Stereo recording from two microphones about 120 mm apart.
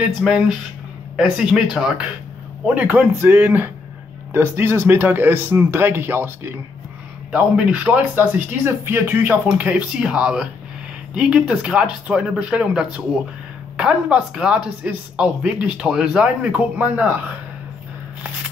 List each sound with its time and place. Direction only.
0.0 s a man's voice: 5° right (ahead or behind)